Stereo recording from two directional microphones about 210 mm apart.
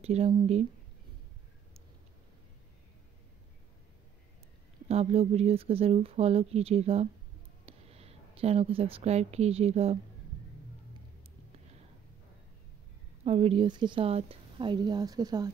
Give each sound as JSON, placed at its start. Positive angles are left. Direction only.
{"t": 0.0, "sound": "speech", "side_deg": -30}
{"t": 4.8, "sound": "speech", "side_deg": -30}
{"t": 13.2, "sound": "speech", "side_deg": -30}